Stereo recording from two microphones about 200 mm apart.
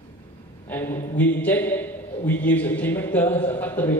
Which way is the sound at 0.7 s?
10° left (ahead or behind).